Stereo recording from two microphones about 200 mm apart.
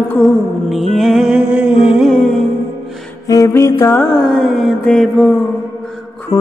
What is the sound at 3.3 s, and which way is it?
Music, 15° left (ahead or behind).